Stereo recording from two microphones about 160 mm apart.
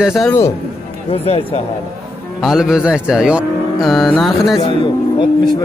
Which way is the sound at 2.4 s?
Centre (ahead or behind).